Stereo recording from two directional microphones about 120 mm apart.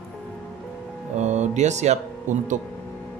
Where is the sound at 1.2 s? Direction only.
75° right (ahead or behind).